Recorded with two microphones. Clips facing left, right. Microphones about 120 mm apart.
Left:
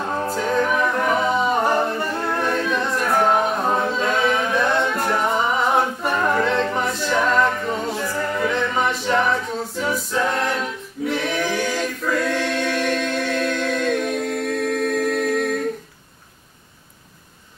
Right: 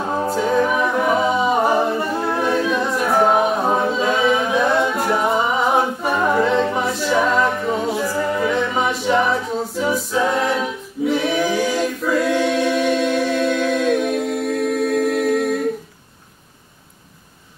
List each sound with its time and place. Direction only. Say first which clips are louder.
0.0 s a capella: right 3 dB; 5° right (ahead or behind)